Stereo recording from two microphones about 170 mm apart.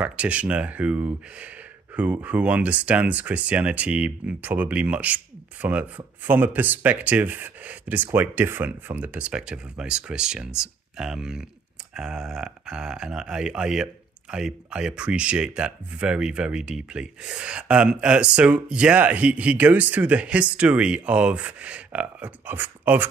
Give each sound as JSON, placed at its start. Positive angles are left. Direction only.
{"t": 0.0, "sound": "speech", "side_deg": -10}